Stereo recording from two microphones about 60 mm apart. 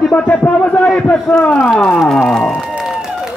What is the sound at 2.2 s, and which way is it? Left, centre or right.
Speech, centre.